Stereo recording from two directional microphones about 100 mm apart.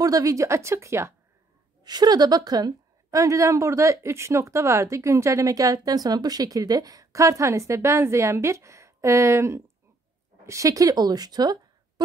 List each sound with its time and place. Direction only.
0.0 s speech: 35° right (ahead or behind)
1.8 s a woman's voice: 45° right (ahead or behind)